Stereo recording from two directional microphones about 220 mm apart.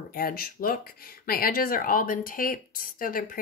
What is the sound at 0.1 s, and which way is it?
Speech, 45° left (ahead or behind).